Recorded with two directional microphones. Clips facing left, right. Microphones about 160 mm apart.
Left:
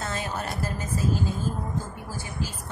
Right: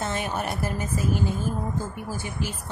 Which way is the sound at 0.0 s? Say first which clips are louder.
Right 3 dB; 20° right (ahead or behind).